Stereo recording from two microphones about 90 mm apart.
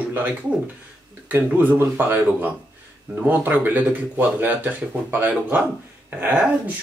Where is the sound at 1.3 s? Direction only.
20° right (ahead or behind).